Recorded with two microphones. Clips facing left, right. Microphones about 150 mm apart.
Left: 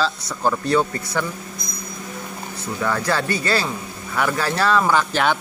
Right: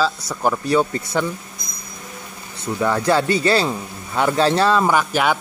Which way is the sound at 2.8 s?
20° right (ahead or behind).